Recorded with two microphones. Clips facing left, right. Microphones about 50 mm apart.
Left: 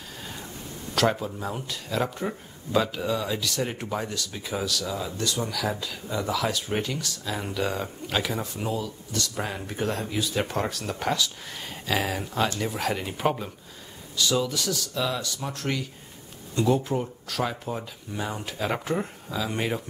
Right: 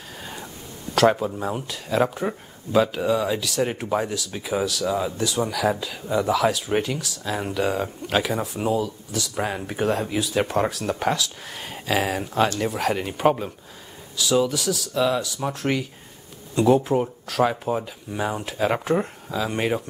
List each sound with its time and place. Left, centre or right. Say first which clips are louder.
0.2 s a sound: right 3 dB; centre
1.1 s speech: right 5 dB; centre
4.8 s speech: right 7 dB; right
5.1 s speech: right 5 dB; centre
9.3 s speech: right 5 dB; centre